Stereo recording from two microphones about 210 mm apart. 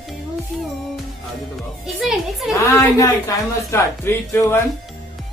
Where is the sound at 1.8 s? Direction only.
Centre (ahead or behind).